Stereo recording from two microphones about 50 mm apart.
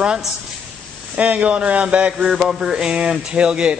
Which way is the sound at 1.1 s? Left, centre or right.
Right.